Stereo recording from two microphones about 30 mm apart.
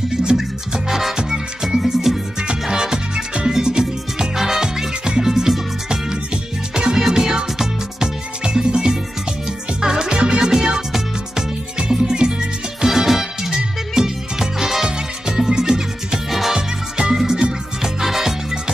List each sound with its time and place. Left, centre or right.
0.8 s music: centre
2.1 s music: centre
2.7 s music: right
7.0 s music: centre
12.8 s music: centre
16.3 s music: centre
16.5 s music: right
17.1 s music: centre